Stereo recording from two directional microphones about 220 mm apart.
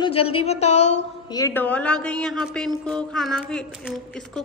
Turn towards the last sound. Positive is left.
turn(degrees=0)  # may be behind; listen again after turning